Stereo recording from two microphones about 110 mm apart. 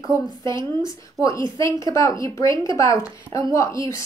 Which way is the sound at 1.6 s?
30° left (ahead or behind).